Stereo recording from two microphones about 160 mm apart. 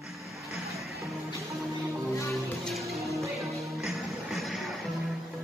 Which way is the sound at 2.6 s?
Centre (ahead or behind).